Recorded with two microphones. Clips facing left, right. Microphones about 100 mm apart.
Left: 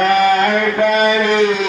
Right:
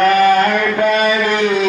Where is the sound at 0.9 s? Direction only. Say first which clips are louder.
Left 1 dB; 15° left (ahead or behind).